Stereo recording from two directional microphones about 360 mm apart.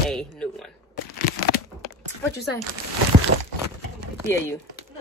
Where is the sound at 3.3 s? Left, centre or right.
Right.